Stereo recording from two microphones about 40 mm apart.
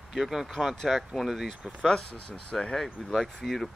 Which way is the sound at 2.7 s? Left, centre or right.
Centre.